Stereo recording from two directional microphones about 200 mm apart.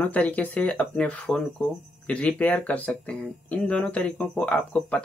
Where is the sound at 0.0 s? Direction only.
5° left (ahead or behind).